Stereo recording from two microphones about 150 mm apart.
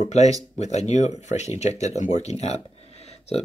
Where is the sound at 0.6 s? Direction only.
50° left (ahead or behind).